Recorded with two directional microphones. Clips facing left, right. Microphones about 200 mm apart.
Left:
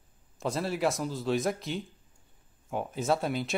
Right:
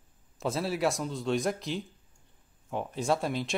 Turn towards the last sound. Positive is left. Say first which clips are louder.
# even
turn(degrees=0)  # may be behind; listen again after turning